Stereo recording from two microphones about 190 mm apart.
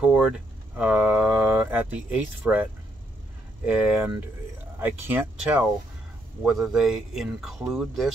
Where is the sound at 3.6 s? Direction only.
10° right (ahead or behind).